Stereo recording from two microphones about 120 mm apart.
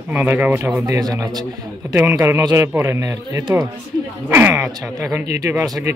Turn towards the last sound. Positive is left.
turn(degrees=-25)  # may be behind; listen again after turning